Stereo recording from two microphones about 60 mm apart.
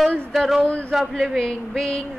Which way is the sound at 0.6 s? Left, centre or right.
Centre.